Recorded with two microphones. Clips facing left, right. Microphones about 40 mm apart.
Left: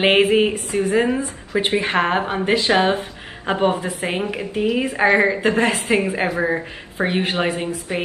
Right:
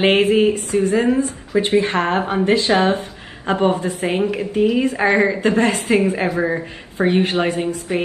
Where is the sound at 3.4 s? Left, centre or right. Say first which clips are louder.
Right 2 dB; centre.